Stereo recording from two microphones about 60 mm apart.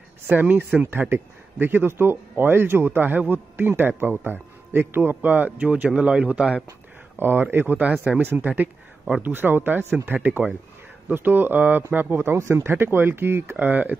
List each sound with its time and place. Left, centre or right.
0.3 s speech: right
7.2 s speech: right
12.4 s speech: right